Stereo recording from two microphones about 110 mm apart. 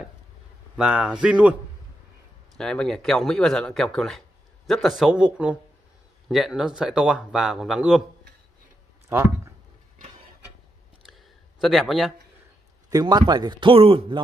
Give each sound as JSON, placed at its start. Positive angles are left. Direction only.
{"t": 0.7, "sound": "a man's voice", "side_deg": -5}
{"t": 2.5, "sound": "speech", "side_deg": 5}
{"t": 9.1, "sound": "speech", "side_deg": -20}
{"t": 11.6, "sound": "speech", "side_deg": 0}
{"t": 13.3, "sound": "speech", "side_deg": -40}
{"t": 13.7, "sound": "speech", "side_deg": -55}